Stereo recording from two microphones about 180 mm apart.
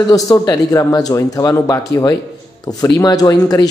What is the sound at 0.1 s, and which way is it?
Speech, 20° left (ahead or behind).